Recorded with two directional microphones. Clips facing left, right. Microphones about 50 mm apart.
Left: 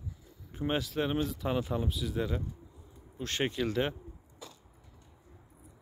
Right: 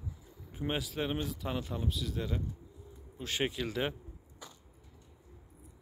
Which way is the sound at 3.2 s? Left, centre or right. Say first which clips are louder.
Left 2 dB; centre.